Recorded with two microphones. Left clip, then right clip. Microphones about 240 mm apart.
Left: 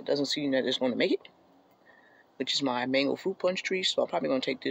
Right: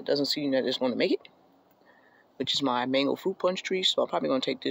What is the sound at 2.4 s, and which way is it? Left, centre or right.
Speech, centre.